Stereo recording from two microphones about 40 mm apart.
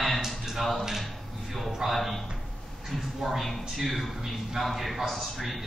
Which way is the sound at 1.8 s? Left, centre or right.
Centre.